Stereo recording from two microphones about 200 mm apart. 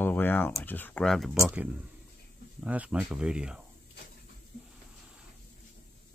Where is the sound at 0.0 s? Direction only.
10° left (ahead or behind).